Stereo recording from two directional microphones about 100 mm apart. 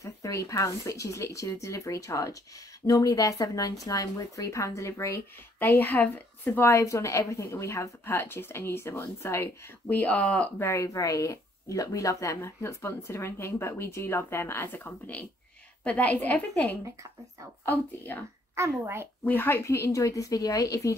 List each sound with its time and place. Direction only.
0.0 s speech: 30° left (ahead or behind)
9.8 s a woman's voice: 15° left (ahead or behind)
10.6 s a woman's voice: 30° left (ahead or behind)
18.5 s a child's voice: 25° right (ahead or behind)
19.2 s speech: 20° left (ahead or behind)